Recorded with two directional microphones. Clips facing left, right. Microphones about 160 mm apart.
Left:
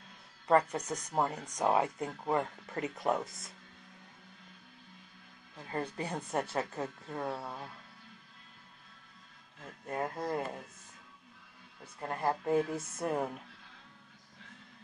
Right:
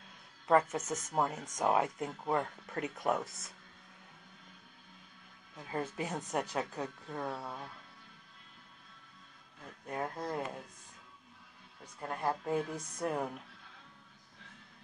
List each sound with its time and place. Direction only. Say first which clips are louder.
0.5 s speech: left 1 dB; centre (ahead or behind)
5.6 s speech: even; 5° right (ahead or behind)
9.8 s speech: left 2 dB; 5° left (ahead or behind)
11.8 s speech: left 2 dB; 5° left (ahead or behind)